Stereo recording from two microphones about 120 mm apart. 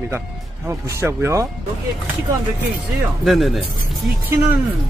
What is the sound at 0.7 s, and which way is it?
Speech, 25° right (ahead or behind).